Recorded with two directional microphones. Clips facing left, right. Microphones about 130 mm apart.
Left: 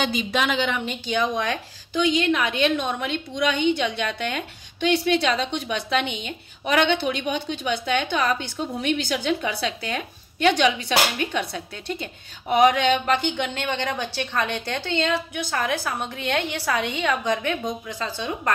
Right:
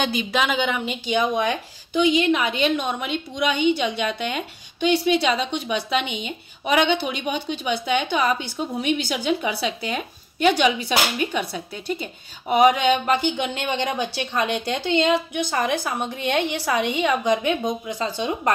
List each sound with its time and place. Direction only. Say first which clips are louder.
0.0 s a woman's voice: right 1 dB; 5° right (ahead or behind)